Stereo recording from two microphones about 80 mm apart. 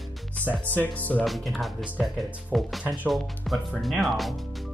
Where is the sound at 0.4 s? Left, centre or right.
Left.